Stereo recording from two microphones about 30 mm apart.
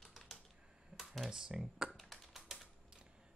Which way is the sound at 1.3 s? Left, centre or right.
Right.